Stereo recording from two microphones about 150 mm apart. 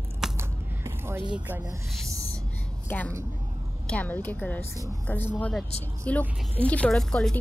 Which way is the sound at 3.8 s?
10° left (ahead or behind).